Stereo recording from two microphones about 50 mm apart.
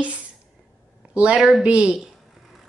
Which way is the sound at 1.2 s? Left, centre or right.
Right.